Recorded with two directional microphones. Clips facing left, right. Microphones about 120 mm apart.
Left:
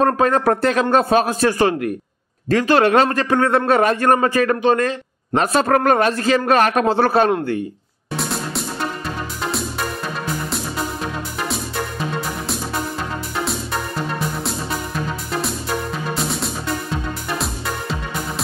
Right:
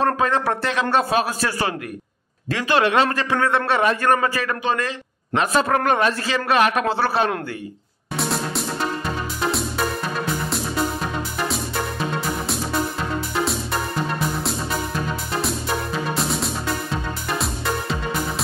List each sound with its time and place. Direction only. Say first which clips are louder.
0.0 s a man's voice: left 4 dB; 40° left (ahead or behind)
8.2 s music: right 1 dB; centre (ahead or behind)